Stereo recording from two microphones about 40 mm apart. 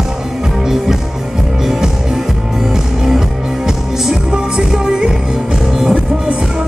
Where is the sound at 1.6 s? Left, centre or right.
Centre.